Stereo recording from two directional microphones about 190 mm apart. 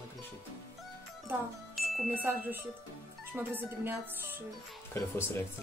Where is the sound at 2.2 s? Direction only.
10° right (ahead or behind).